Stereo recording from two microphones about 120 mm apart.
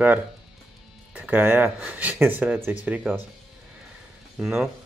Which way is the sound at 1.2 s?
15° right (ahead or behind).